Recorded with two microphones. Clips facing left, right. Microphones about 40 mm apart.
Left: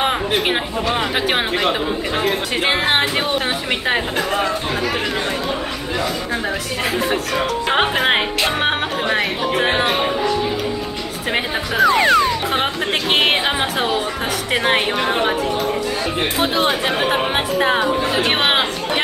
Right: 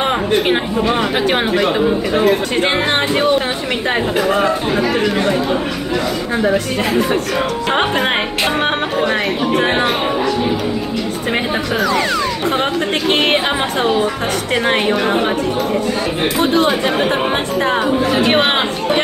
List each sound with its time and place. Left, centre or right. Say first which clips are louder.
0.0 s a sound: right 3 dB; centre
0.9 s speech: even; centre
6.4 s speech: right 6 dB; centre
11.8 s speech: left 6 dB; centre
13.1 s a woman's voice: right 1 dB; centre
16.3 s speech: right 5 dB; centre